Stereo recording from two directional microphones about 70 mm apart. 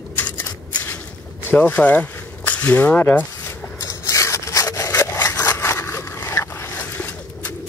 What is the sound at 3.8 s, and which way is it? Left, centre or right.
Wood, left.